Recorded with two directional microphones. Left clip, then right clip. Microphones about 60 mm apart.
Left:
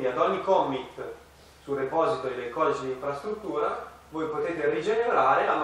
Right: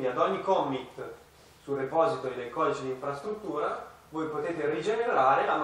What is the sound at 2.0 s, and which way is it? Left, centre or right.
Speech, centre.